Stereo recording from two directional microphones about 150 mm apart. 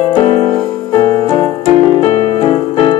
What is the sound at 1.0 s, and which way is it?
Keyboard, 35° left (ahead or behind).